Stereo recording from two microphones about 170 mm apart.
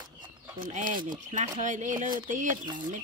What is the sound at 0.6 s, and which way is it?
Speech, 50° right (ahead or behind).